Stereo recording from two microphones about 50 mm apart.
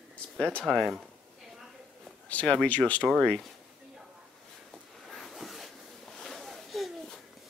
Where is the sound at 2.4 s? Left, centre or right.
Centre.